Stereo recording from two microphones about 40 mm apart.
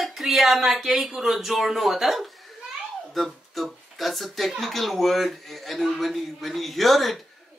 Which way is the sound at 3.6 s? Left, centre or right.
Centre.